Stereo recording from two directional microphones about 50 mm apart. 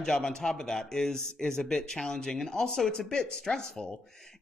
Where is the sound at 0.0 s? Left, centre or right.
Centre.